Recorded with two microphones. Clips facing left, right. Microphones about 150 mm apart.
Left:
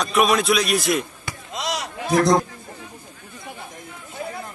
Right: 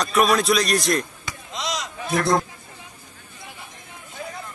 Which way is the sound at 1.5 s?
55° left (ahead or behind).